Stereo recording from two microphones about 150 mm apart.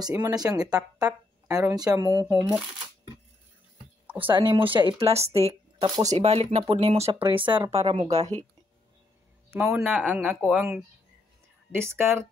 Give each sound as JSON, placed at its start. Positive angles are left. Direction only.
{"t": 0.0, "sound": "speech", "side_deg": -20}
{"t": 4.2, "sound": "speech", "side_deg": -35}
{"t": 7.7, "sound": "speech", "side_deg": -45}
{"t": 9.6, "sound": "speech", "side_deg": -10}
{"t": 11.8, "sound": "speech", "side_deg": -15}